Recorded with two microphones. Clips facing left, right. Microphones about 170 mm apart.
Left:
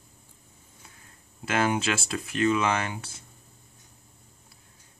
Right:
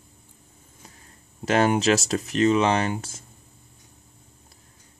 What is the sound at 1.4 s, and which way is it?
Speech, 35° right (ahead or behind).